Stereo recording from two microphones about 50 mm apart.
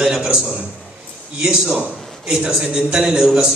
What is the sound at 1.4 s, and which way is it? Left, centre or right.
A man's voice, centre.